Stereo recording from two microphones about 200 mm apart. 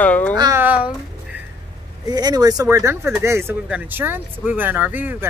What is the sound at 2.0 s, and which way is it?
Speech, 20° right (ahead or behind).